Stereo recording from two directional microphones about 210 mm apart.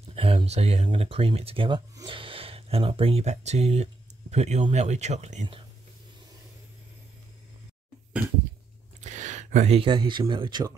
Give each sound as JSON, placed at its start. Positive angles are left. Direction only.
{"t": 0.1, "sound": "speech", "side_deg": -30}
{"t": 9.0, "sound": "speech", "side_deg": -35}